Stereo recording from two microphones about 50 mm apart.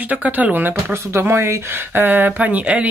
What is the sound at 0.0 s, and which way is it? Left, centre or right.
Speech, right.